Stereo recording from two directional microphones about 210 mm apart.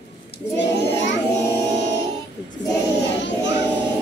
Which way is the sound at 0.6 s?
60° left (ahead or behind).